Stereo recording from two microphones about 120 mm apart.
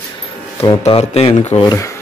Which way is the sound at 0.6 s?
40° left (ahead or behind).